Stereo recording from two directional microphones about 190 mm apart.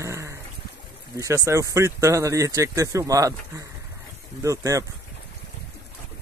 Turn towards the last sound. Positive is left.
turn(degrees=-15)  # may be behind; listen again after turning